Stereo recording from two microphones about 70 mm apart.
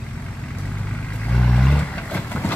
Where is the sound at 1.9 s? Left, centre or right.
Left.